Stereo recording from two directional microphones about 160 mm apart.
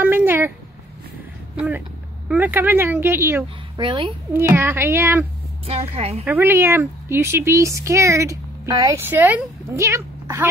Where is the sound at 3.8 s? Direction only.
30° right (ahead or behind).